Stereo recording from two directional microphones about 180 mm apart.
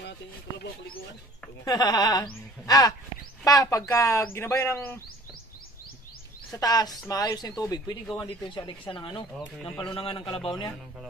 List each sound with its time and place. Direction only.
1.6 s speech: 20° left (ahead or behind)
6.5 s speech: 20° left (ahead or behind)
9.4 s speech: 5° left (ahead or behind)
9.8 s speech: 30° left (ahead or behind)